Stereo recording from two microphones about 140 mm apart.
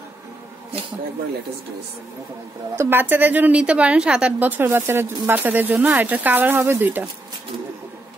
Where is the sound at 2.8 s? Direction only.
15° right (ahead or behind).